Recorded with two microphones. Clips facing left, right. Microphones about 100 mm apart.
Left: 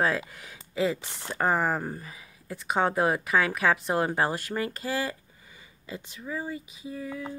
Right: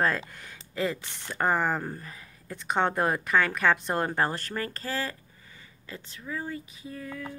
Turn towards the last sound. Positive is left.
turn(degrees=10)  # may be behind; listen again after turning